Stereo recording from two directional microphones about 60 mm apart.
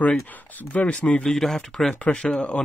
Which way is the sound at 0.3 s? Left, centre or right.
Left.